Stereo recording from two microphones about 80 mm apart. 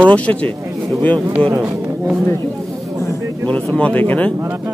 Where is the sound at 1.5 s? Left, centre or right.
Right.